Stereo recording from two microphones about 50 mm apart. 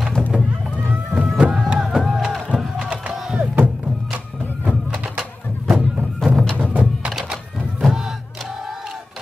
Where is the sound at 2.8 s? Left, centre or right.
Right.